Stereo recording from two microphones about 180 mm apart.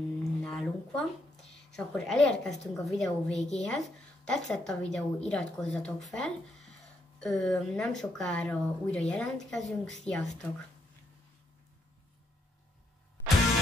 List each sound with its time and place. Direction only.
0.2 s a sound: 5° left (ahead or behind)
3.3 s speech: 35° left (ahead or behind)
3.6 s speech: 5° left (ahead or behind)